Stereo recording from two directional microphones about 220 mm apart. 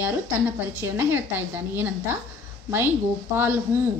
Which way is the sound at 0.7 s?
10° right (ahead or behind).